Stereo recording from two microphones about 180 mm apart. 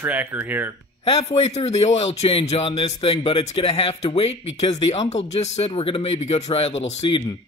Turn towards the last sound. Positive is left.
turn(degrees=25)  # may be behind; listen again after turning